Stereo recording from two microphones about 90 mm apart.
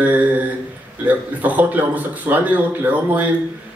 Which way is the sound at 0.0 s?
20° right (ahead or behind).